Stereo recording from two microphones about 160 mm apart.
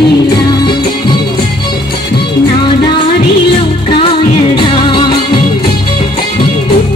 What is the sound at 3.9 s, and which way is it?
Music, 30° left (ahead or behind).